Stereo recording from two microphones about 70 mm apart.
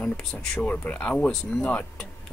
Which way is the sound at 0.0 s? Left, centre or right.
Centre.